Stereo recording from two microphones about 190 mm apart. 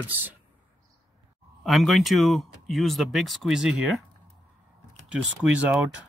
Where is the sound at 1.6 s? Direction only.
Centre (ahead or behind).